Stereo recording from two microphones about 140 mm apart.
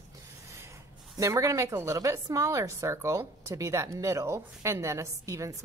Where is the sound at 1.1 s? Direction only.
20° right (ahead or behind).